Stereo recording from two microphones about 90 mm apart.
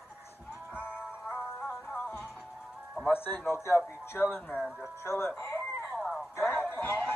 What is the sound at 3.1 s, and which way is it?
A man's voice, 25° left (ahead or behind).